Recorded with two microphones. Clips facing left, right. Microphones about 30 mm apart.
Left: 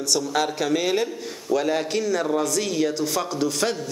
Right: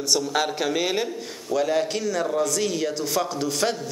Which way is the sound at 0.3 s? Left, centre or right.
Centre.